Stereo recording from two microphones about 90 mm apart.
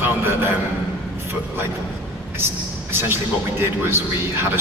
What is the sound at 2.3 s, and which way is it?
A man's voice, 25° right (ahead or behind).